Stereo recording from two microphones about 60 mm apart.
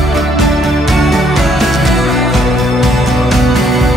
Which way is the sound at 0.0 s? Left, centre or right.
Centre.